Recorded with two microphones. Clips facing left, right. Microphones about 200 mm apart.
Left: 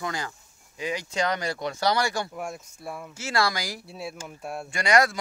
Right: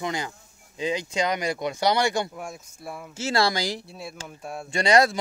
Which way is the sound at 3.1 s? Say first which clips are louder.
Right 3 dB; 25° right (ahead or behind).